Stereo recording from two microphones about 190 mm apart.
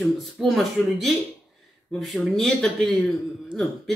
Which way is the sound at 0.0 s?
Centre (ahead or behind).